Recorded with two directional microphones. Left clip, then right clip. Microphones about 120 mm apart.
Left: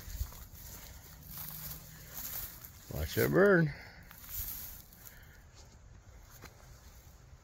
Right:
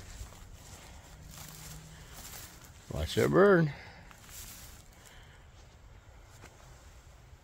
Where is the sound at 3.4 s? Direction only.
30° right (ahead or behind).